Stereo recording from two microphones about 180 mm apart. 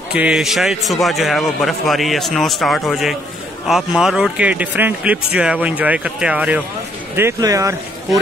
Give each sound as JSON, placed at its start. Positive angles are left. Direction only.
{"t": 0.1, "sound": "a man's voice", "side_deg": -5}